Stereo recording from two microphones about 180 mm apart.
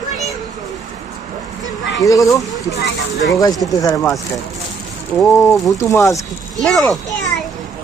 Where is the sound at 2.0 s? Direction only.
20° left (ahead or behind).